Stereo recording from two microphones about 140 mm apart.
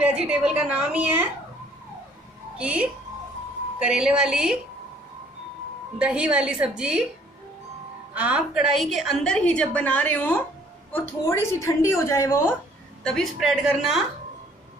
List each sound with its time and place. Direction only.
0.0 s a woman's voice: 5° right (ahead or behind)
2.5 s a woman's voice: 10° right (ahead or behind)
5.9 s a woman's voice: 5° right (ahead or behind)
8.1 s a woman's voice: 10° right (ahead or behind); by 12.4 s 20° left (ahead or behind)
13.0 s a woman's voice: centre (ahead or behind)